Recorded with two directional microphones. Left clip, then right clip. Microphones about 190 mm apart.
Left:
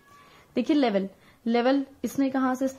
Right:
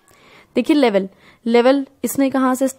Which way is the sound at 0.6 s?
50° right (ahead or behind).